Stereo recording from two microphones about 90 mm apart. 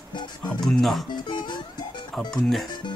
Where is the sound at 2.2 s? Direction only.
5° left (ahead or behind).